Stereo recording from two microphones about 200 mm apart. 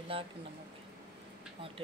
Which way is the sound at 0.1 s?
25° right (ahead or behind).